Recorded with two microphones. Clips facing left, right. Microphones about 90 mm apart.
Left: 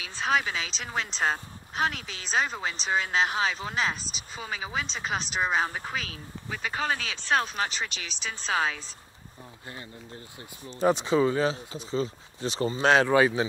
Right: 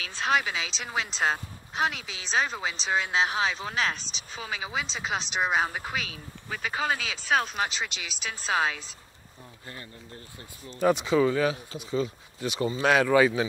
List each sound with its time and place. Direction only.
0.0 s speech: centre (ahead or behind)
10.6 s speech: 20° left (ahead or behind)